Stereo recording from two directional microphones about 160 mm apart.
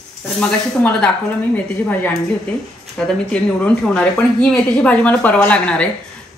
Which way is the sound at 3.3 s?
5° left (ahead or behind).